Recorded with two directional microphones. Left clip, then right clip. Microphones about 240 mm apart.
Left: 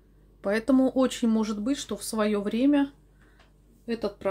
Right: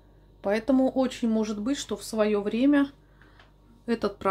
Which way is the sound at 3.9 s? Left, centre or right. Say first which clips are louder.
Right 2 dB; centre.